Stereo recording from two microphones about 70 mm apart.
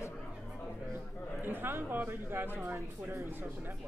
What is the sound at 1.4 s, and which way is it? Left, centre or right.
Speech, right.